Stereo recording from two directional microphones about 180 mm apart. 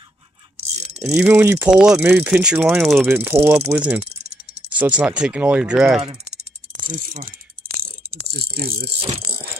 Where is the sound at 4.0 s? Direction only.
35° right (ahead or behind).